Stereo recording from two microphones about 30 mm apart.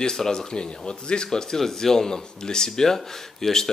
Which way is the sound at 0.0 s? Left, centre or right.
Centre.